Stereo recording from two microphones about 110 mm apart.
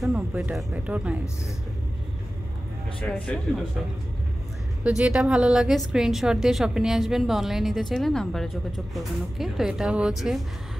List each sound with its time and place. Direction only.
0.8 s speech: 10° right (ahead or behind)
3.0 s speech: 10° left (ahead or behind)
4.8 s a woman's voice: 5° right (ahead or behind)